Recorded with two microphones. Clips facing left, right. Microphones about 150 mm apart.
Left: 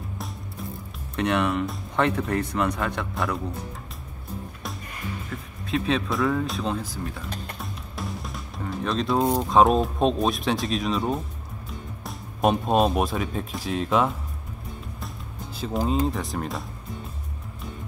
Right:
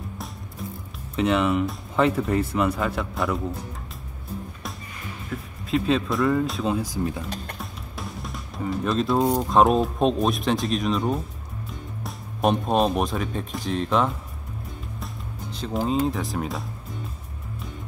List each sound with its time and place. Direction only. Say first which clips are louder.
1.1 s speech: right 2 dB; centre (ahead or behind)
5.3 s speech: right 4 dB; centre (ahead or behind)
6.8 s speech: right 6 dB; 15° right (ahead or behind)
7.5 s speech: left 1 dB; centre (ahead or behind)
15.5 s speech: right 1 dB; 5° left (ahead or behind)